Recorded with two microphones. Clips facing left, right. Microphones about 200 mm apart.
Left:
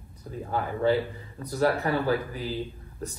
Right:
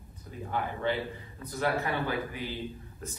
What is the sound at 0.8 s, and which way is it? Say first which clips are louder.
A man's voice: left 7 dB; 35° left (ahead or behind).